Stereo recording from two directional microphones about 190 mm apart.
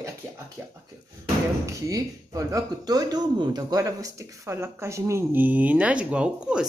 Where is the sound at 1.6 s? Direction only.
15° right (ahead or behind).